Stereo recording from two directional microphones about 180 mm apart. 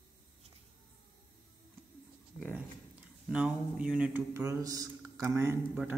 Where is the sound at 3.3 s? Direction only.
5° right (ahead or behind).